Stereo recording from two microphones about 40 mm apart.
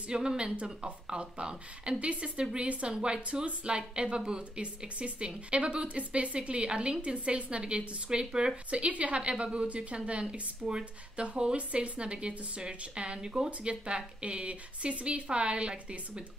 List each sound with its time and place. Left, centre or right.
0.1 s a woman's voice: right
8.6 s a woman's voice: right